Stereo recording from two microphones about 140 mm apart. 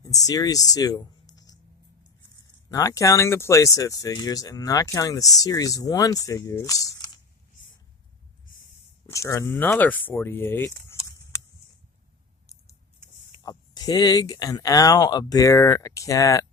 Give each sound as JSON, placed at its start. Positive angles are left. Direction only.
{"t": 0.0, "sound": "speech", "side_deg": 25}
{"t": 2.7, "sound": "speech", "side_deg": 25}
{"t": 9.1, "sound": "speech", "side_deg": 20}
{"t": 9.5, "sound": "speech", "side_deg": 10}
{"t": 13.4, "sound": "speech", "side_deg": 25}